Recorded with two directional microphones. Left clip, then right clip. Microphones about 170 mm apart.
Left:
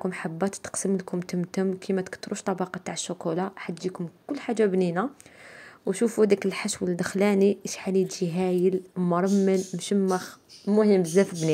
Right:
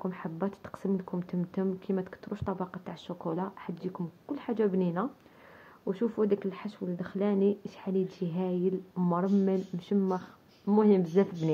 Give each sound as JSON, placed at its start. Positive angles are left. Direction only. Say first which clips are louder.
{"t": 0.0, "sound": "speech", "louder": "left 6 dB", "side_deg": 30}
{"t": 10.7, "sound": "speech", "louder": "left 4 dB", "side_deg": 20}